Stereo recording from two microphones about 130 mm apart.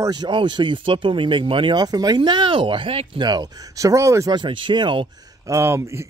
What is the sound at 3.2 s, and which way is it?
Speech, 35° right (ahead or behind).